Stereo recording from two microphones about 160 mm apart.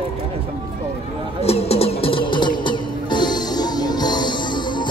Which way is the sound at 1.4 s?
40° left (ahead or behind).